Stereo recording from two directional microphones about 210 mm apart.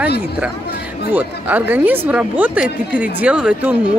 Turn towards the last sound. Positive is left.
turn(degrees=-5)  # may be behind; listen again after turning